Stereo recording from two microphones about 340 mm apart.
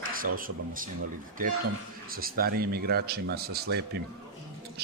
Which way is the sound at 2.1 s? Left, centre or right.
Right.